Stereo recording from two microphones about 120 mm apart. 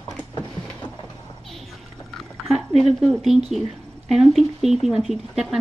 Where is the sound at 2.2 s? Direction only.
Centre (ahead or behind).